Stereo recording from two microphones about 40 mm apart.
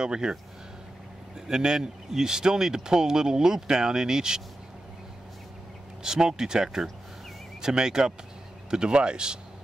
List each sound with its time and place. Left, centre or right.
0.0 s speech: centre
1.5 s speech: centre
6.0 s speech: centre